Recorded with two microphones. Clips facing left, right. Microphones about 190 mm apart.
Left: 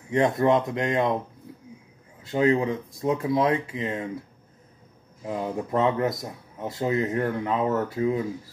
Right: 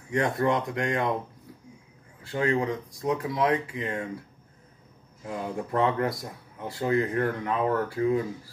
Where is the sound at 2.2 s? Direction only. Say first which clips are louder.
Left 4 dB; 25° left (ahead or behind).